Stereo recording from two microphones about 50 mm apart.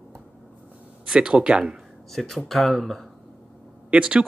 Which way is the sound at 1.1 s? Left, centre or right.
Centre.